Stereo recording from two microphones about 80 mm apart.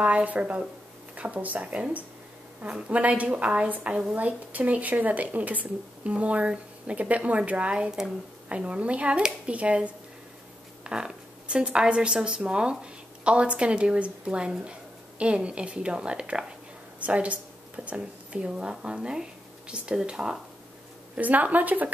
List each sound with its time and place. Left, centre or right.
0.0 s a woman's voice: centre
21.2 s a woman's voice: centre